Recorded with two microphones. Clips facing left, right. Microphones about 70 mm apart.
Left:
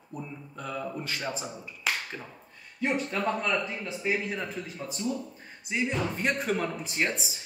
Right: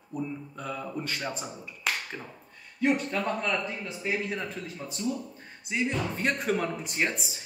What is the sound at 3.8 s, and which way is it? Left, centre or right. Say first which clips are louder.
Speech: left 2 dB; centre.